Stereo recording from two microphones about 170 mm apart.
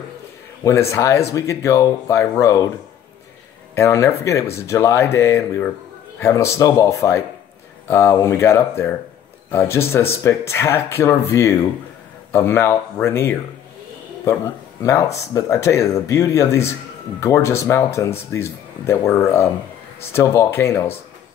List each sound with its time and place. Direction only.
0.7 s speech: 15° left (ahead or behind)
3.7 s speech: 20° left (ahead or behind)
14.8 s speech: 20° left (ahead or behind)